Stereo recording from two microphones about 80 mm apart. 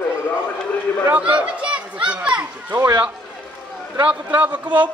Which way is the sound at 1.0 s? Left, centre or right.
Centre.